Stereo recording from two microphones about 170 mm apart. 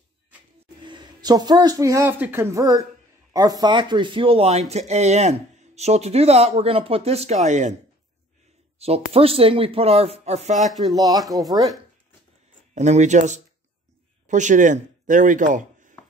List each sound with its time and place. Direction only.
0.8 s speech: 25° right (ahead or behind); by 7.7 s 45° right (ahead or behind)
8.7 s speech: 35° right (ahead or behind)
10.8 s speech: 20° right (ahead or behind)
12.7 s speech: 45° right (ahead or behind)